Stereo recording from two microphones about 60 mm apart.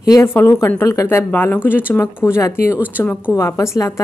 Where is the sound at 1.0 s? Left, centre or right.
Left.